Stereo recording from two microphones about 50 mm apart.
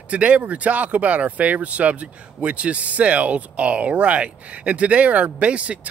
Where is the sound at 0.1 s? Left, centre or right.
Right.